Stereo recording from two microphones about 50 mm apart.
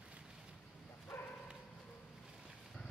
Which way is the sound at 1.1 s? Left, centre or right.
Left.